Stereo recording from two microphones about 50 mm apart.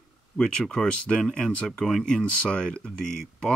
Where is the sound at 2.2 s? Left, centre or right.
Centre.